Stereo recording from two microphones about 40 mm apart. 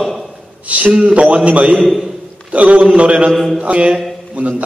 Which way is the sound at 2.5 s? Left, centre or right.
Right.